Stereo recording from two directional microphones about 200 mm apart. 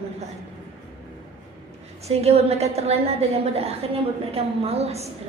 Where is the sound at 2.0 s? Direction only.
30° right (ahead or behind).